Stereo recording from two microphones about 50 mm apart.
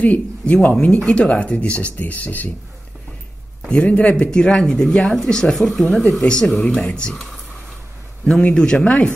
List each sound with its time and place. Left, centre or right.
0.0 s speech: left
3.6 s speech: left
4.3 s speech: centre
6.2 s speech: centre
8.5 s speech: centre